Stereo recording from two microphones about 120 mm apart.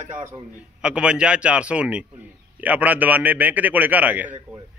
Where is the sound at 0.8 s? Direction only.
10° right (ahead or behind).